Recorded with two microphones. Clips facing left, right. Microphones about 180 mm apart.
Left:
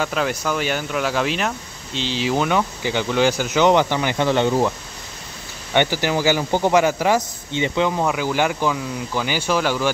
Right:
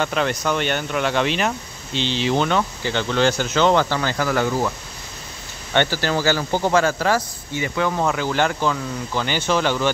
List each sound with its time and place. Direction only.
0.0 s speech: 5° left (ahead or behind)
8.0 s speech: 10° left (ahead or behind)